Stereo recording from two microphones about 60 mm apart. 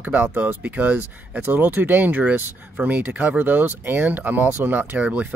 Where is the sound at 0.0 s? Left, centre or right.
Right.